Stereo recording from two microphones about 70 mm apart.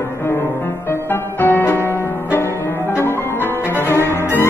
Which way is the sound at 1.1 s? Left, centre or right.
Left.